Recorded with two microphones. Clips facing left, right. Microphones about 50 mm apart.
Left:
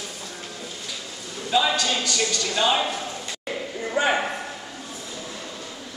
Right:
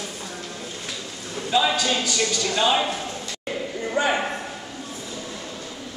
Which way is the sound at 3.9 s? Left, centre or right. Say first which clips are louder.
Even; centre.